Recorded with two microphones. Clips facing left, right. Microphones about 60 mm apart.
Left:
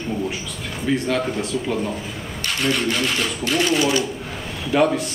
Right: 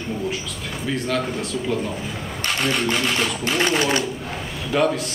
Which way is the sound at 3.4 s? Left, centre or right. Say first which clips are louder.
Left 3 dB; right.